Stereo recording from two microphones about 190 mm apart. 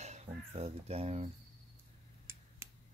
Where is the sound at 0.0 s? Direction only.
35° right (ahead or behind).